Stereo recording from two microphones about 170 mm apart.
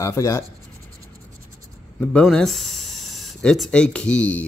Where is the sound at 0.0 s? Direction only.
15° left (ahead or behind).